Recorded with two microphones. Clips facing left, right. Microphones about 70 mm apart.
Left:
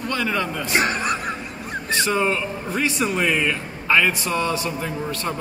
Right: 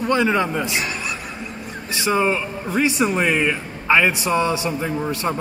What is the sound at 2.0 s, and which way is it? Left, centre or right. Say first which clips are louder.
A man's voice: right 4 dB; centre.